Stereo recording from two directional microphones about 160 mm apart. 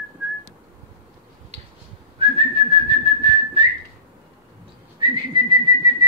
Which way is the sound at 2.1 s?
35° right (ahead or behind).